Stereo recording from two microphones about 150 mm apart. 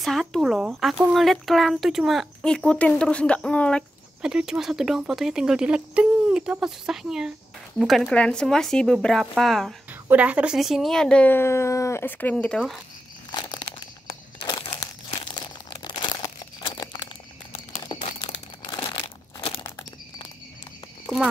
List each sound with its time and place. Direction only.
0.0 s speech: centre (ahead or behind)
4.2 s speech: 5° right (ahead or behind)
9.8 s a woman's voice: 10° right (ahead or behind); by 12.7 s 5° left (ahead or behind)
13.3 s crumpling: 30° left (ahead or behind)
17.9 s crumpling: 30° left (ahead or behind)